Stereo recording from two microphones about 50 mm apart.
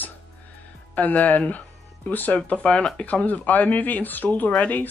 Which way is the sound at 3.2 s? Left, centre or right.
Left.